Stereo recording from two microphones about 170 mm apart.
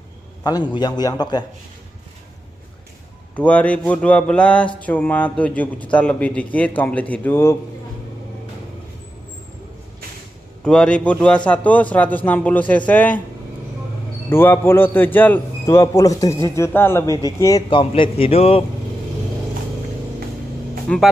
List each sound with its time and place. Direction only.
0.4 s a man's voice: 25° left (ahead or behind)
3.3 s speech: 10° left (ahead or behind)
10.6 s speech: 5° left (ahead or behind)
14.3 s a man's voice: 15° left (ahead or behind); by 18.6 s 35° left (ahead or behind)
20.9 s speech: 5° left (ahead or behind)